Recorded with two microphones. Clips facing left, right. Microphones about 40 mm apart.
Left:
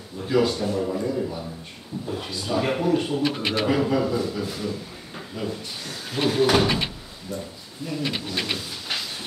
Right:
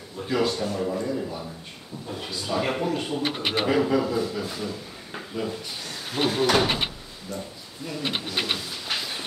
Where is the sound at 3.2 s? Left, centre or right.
Right.